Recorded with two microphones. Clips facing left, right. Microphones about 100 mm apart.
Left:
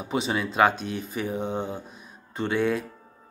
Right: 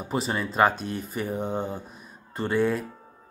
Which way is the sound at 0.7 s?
45° right (ahead or behind).